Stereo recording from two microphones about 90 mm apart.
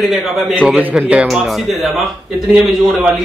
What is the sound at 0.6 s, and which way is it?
Speech, 15° right (ahead or behind).